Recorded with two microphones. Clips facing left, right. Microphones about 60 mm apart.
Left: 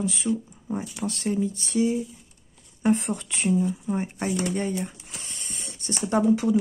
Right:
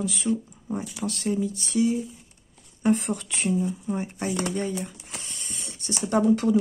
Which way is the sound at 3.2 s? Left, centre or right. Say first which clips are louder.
Even; centre.